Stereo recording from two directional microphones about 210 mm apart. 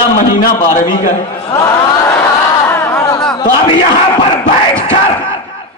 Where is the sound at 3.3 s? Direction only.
20° left (ahead or behind).